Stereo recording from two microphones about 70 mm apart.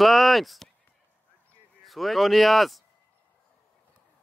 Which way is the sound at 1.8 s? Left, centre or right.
Centre.